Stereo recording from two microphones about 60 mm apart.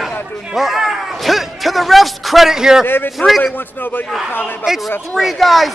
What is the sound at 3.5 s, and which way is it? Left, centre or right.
Speech, left.